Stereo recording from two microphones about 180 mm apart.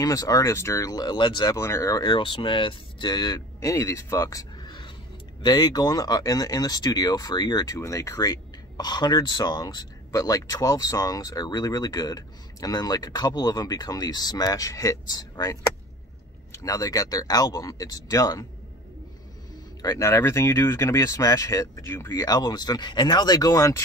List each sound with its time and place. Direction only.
0.0 s speech: 20° left (ahead or behind)
16.5 s speech: 20° left (ahead or behind)
19.8 s speech: 15° left (ahead or behind)